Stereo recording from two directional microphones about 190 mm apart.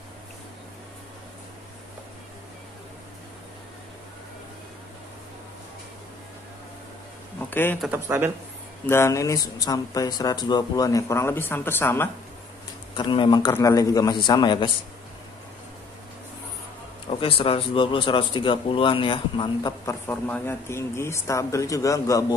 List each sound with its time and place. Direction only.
7.3 s a sound: 10° left (ahead or behind)
7.8 s speech: 10° right (ahead or behind)
8.8 s speech: 15° left (ahead or behind)
12.9 s speech: 25° left (ahead or behind)
17.1 s speech: 30° left (ahead or behind)